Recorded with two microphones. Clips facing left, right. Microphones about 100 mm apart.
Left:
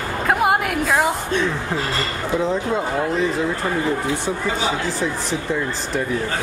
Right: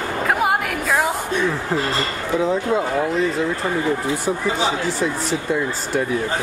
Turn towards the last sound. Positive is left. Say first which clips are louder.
# right 1 dB
turn(degrees=0)  # may be behind; listen again after turning